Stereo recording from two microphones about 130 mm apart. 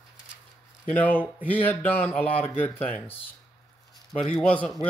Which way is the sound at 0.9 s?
15° left (ahead or behind).